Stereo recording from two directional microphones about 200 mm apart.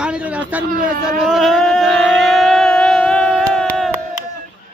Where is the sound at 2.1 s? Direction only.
Centre (ahead or behind).